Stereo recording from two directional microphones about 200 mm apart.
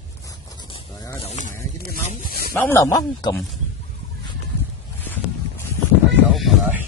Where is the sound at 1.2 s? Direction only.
35° left (ahead or behind).